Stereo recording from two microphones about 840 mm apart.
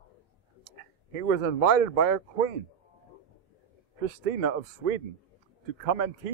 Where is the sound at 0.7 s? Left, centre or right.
Right.